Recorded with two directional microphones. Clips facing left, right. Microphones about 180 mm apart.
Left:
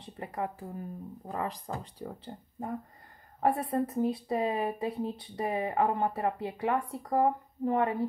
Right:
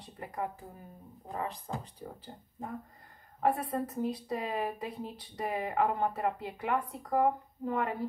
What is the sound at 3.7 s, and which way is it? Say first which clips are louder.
Speech: left 4 dB; 30° left (ahead or behind).